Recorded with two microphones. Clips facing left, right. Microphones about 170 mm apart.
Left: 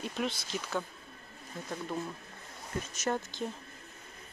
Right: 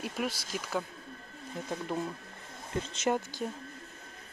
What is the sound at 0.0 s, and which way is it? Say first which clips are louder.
Speech: even; 10° right (ahead or behind).